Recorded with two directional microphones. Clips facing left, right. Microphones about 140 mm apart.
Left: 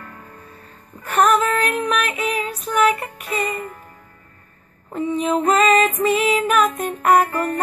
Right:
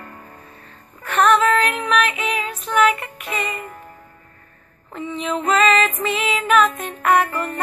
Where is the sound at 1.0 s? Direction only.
40° left (ahead or behind).